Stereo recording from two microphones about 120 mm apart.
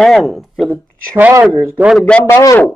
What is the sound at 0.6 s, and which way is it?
Speech, 20° right (ahead or behind).